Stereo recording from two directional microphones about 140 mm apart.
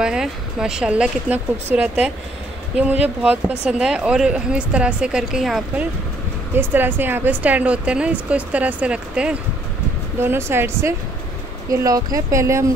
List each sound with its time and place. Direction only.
0.0 s speech: 5° right (ahead or behind)
6.7 s speech: 15° right (ahead or behind)